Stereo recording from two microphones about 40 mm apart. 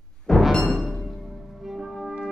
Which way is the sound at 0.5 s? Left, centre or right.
Centre.